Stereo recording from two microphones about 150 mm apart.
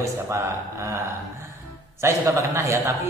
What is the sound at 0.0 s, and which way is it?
Speech, 20° right (ahead or behind).